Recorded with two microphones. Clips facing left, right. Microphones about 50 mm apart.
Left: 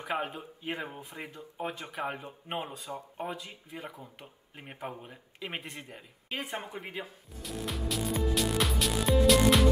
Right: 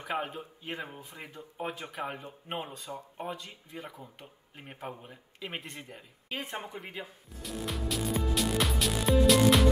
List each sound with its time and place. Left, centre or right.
0.0 s speech: centre
0.8 s speech: centre
1.2 s speech: centre
6.7 s music: centre